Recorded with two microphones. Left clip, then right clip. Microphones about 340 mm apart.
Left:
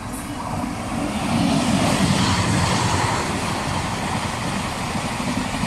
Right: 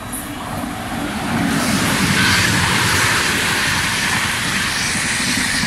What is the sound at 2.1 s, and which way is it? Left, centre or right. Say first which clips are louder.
Vehicle: right 6 dB; centre.